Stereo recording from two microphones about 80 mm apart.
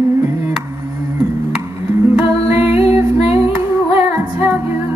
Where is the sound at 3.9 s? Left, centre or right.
Right.